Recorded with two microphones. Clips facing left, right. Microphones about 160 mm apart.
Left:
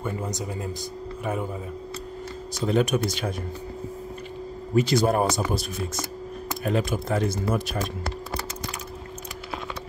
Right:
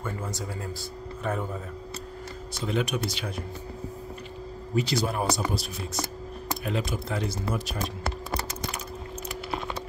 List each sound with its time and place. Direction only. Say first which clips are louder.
0.0 s a man's voice: left 4 dB; 20° left (ahead or behind)
2.6 s speech: left 6 dB; 45° left (ahead or behind)
4.7 s speech: left 6 dB; 50° left (ahead or behind)